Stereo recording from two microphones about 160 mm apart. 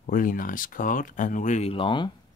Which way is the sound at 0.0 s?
60° left (ahead or behind).